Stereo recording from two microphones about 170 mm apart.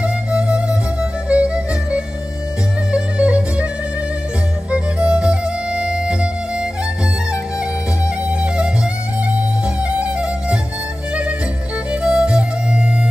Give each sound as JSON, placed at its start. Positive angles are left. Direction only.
{"t": 0.0, "sound": "music", "side_deg": -5}
{"t": 4.6, "sound": "music", "side_deg": -5}
{"t": 8.3, "sound": "music", "side_deg": -5}
{"t": 9.8, "sound": "music", "side_deg": -5}
{"t": 11.9, "sound": "music", "side_deg": -5}